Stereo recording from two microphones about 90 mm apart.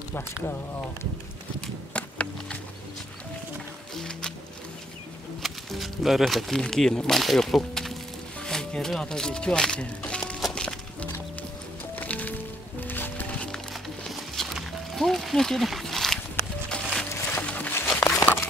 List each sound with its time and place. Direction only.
0.1 s speech: 30° left (ahead or behind)
2.0 s a sound: 15° left (ahead or behind)
3.9 s music: 5° left (ahead or behind)
5.4 s speech: centre (ahead or behind)
10.4 s music: 10° left (ahead or behind)
14.1 s music: centre (ahead or behind)
17.1 s music: 30° left (ahead or behind)
17.4 s a sound: 15° left (ahead or behind)